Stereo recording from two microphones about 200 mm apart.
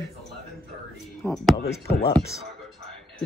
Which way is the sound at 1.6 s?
50° left (ahead or behind).